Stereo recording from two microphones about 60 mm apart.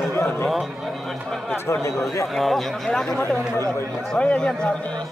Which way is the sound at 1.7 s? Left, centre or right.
Left.